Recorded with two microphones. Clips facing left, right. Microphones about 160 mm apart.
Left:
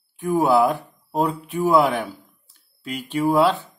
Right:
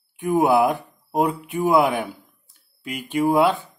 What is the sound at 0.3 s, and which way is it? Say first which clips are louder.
Speech: even; 15° right (ahead or behind).